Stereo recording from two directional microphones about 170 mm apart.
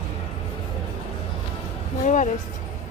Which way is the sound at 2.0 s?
45° left (ahead or behind).